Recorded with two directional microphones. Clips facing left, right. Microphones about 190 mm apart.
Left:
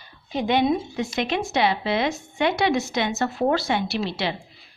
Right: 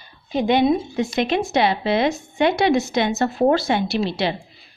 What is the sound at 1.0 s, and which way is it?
Speech, 35° right (ahead or behind).